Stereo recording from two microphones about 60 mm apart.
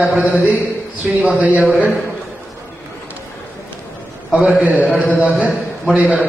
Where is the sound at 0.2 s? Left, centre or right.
Right.